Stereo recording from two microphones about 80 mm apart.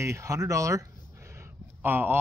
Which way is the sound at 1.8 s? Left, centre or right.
Right.